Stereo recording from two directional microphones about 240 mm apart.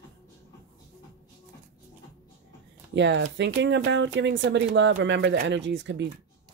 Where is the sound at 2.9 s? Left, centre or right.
Right.